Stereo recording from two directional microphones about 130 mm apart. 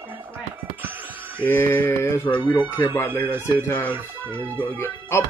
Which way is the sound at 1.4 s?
15° left (ahead or behind).